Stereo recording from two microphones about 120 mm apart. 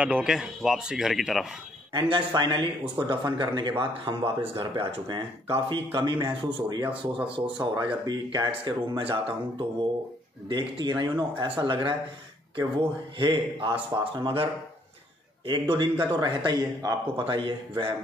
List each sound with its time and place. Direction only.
0.0 s speech: 10° right (ahead or behind)
2.0 s speech: 40° right (ahead or behind)
5.1 s speech: 40° right (ahead or behind)
10.5 s speech: 40° right (ahead or behind)
15.7 s speech: 40° right (ahead or behind)